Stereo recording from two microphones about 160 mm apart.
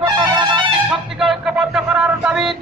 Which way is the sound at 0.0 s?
25° right (ahead or behind).